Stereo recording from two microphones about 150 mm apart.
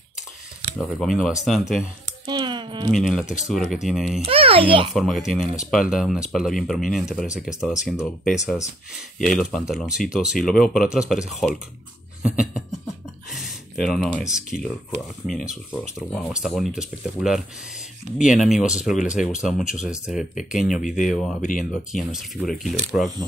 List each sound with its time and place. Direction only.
0.7 s speech: centre (ahead or behind)
2.2 s speech: 30° right (ahead or behind)
3.0 s speech: centre (ahead or behind)
4.3 s a child's voice: 40° right (ahead or behind)
4.9 s speech: centre (ahead or behind)
13.3 s a sound: centre (ahead or behind)
14.2 s speech: 5° right (ahead or behind)
21.4 s speech: 60° left (ahead or behind)
21.9 s speech: centre (ahead or behind)